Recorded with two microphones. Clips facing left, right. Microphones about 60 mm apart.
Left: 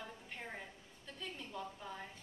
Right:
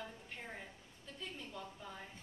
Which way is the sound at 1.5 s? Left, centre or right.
Centre.